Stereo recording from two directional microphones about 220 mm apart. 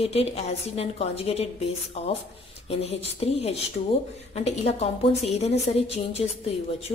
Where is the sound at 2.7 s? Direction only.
25° left (ahead or behind).